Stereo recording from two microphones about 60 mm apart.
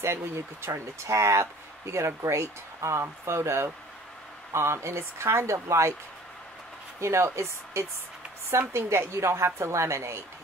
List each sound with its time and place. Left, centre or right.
0.0 s speech: right
7.0 s speech: right